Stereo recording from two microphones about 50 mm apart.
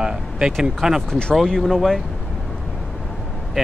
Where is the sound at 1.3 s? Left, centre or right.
Centre.